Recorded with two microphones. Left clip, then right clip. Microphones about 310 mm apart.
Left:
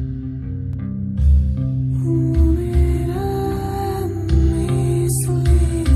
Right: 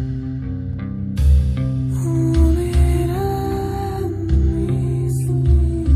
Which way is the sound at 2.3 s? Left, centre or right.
Centre.